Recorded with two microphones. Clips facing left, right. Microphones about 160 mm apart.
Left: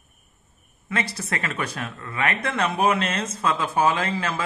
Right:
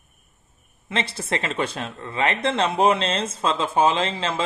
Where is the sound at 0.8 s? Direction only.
25° right (ahead or behind).